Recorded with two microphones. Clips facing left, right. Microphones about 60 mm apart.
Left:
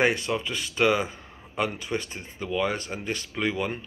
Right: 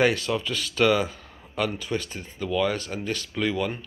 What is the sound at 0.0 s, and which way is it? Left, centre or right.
Speech, left.